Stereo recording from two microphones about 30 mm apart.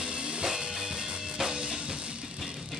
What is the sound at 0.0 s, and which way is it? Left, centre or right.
Music, right.